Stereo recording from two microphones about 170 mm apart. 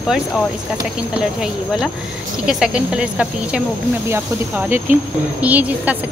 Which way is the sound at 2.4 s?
5° right (ahead or behind).